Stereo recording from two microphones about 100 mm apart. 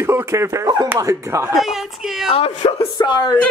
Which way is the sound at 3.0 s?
50° left (ahead or behind).